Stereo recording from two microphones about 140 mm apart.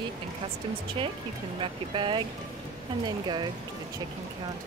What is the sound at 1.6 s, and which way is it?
Speech, 35° right (ahead or behind).